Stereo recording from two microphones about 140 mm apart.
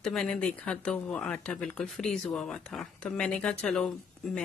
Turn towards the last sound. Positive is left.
turn(degrees=5)  # may be behind; listen again after turning